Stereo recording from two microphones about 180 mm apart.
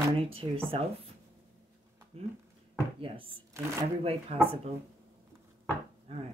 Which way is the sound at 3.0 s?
30° right (ahead or behind).